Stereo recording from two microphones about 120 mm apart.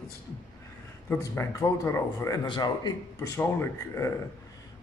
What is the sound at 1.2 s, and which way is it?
A man's voice, 25° left (ahead or behind).